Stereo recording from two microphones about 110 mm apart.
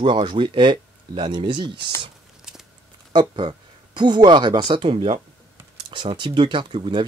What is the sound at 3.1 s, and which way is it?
Speech, 45° right (ahead or behind).